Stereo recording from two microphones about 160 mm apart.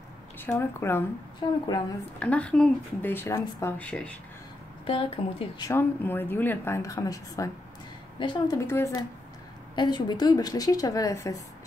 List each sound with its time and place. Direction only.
0.4 s speech: 15° left (ahead or behind)
1.4 s a woman's voice: 25° left (ahead or behind)
2.1 s speech: 10° left (ahead or behind)
4.8 s speech: 35° left (ahead or behind)
5.7 s a woman's voice: 15° left (ahead or behind); by 8.5 s 30° left (ahead or behind)
8.5 s a woman's voice: 15° left (ahead or behind)